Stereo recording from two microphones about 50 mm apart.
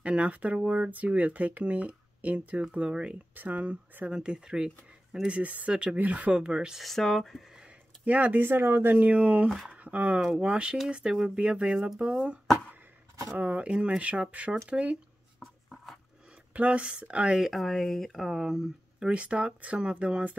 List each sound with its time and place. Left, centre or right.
0.0 s speech: right
3.3 s speech: right
4.1 s speech: centre
5.4 s speech: right
5.7 s speech: centre
6.8 s speech: centre
7.6 s speech: right
8.9 s speech: right
13.4 s speech: right
15.7 s dog: centre
16.5 s speech: right
17.4 s speech: centre
18.2 s speech: centre
19.0 s speech: right